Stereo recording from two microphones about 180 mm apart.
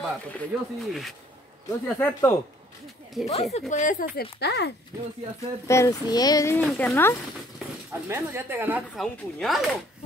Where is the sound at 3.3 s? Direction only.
35° left (ahead or behind); by 4.7 s 65° left (ahead or behind).